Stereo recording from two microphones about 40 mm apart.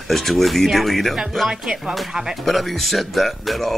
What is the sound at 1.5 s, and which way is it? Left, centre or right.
Speech, right.